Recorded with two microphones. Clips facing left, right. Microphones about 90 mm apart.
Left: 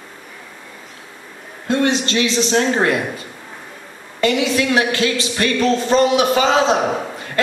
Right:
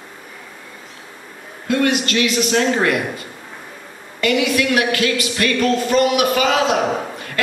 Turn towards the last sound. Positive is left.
turn(degrees=30)  # may be behind; listen again after turning